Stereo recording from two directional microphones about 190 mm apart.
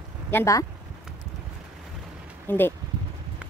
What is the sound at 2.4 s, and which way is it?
Speech, 10° left (ahead or behind).